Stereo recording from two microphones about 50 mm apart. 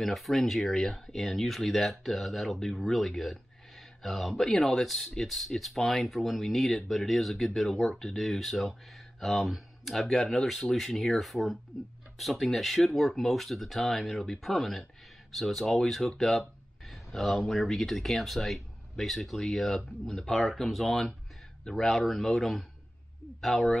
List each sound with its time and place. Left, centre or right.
0.0 s speech: centre